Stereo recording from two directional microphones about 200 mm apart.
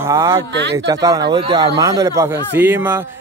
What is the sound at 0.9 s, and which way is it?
Speech, 20° right (ahead or behind).